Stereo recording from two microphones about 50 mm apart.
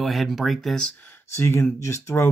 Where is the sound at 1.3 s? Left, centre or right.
Left.